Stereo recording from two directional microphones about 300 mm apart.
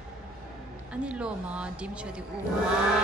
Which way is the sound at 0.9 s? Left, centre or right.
Centre.